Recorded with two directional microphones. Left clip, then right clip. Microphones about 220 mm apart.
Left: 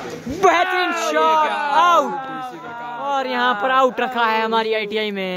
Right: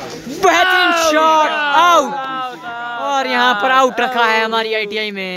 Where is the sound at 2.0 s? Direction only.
40° right (ahead or behind).